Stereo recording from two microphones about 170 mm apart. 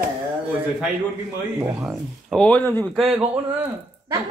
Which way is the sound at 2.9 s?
Centre (ahead or behind).